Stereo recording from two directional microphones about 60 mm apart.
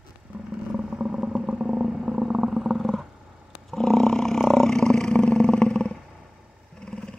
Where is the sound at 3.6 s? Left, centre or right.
Centre.